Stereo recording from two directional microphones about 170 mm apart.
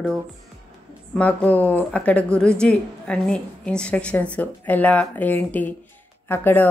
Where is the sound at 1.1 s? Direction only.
10° left (ahead or behind).